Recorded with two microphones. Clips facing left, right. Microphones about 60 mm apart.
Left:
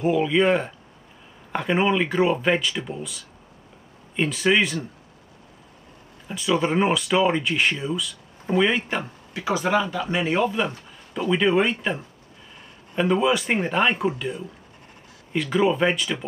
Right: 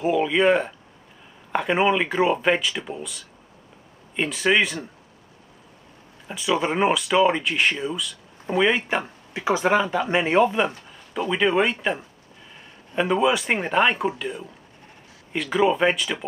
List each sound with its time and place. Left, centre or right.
0.0 s speech: centre
6.3 s speech: centre; by 10.7 s right
11.2 s speech: centre
12.9 s speech: centre